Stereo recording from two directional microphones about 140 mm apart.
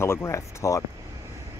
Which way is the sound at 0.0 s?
20° left (ahead or behind).